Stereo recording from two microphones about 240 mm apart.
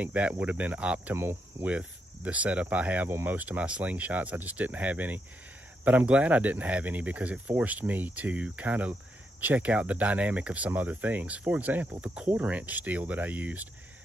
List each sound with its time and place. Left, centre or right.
0.0 s cricket: centre
9.4 s speech: centre